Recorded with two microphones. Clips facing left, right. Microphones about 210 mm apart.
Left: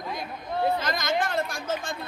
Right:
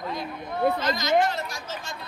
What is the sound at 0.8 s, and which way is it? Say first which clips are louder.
A woman's voice: right 5 dB; 50° left (ahead or behind).